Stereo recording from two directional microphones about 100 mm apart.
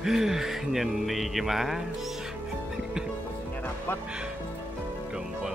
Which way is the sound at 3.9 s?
20° left (ahead or behind).